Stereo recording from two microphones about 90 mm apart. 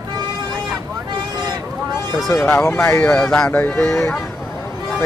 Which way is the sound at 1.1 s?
55° right (ahead or behind).